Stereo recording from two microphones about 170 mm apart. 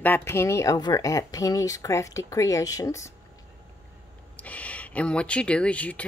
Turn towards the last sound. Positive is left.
turn(degrees=10)  # may be behind; listen again after turning